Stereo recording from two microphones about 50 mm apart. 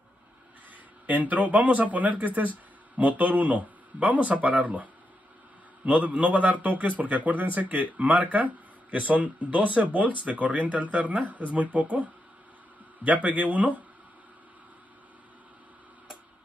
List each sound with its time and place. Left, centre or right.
1.0 s speech: right
5.9 s a man's voice: right